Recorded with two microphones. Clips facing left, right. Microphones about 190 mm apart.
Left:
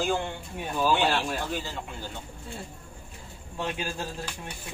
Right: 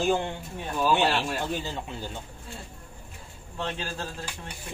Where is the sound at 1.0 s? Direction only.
Centre (ahead or behind).